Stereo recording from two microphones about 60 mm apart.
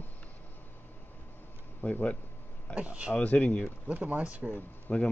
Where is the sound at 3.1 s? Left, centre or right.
Left.